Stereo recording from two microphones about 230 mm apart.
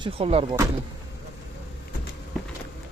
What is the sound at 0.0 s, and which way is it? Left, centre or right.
Speech, right.